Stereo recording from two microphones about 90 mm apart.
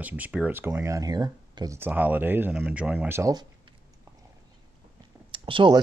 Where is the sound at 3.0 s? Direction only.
30° right (ahead or behind).